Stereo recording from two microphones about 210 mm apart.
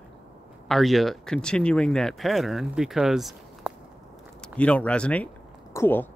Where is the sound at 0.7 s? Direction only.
Centre (ahead or behind).